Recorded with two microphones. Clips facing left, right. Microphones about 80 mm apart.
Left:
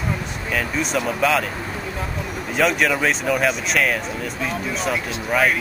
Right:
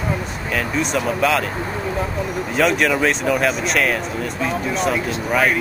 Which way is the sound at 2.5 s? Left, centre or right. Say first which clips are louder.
Right 1 dB; centre.